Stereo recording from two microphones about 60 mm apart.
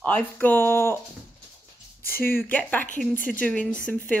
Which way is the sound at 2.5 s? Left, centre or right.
Left.